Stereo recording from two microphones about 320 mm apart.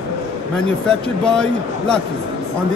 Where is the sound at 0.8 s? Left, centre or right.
Centre.